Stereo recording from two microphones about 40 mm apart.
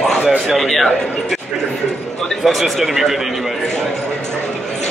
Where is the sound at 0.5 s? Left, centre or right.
Centre.